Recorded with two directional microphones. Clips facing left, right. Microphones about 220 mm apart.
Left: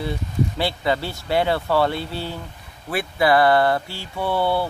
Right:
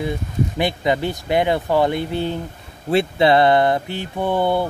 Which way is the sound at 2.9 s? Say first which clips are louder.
Right 4 dB; 25° right (ahead or behind).